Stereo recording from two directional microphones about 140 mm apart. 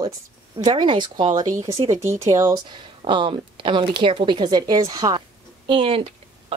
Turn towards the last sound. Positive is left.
turn(degrees=-40)  # may be behind; listen again after turning